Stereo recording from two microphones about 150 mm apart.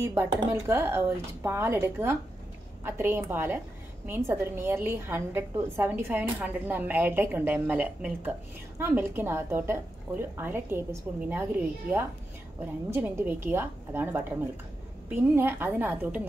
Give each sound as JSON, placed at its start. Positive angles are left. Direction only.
{"t": 0.0, "sound": "a woman's voice", "side_deg": -15}
{"t": 12.9, "sound": "a woman's voice", "side_deg": -15}